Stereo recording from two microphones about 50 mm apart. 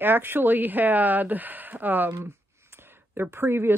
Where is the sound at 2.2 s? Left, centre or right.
Right.